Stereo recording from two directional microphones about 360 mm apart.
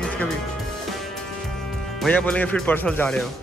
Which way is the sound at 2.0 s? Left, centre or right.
Centre.